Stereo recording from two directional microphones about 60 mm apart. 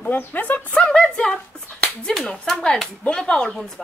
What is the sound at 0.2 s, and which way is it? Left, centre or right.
A woman's voice, left.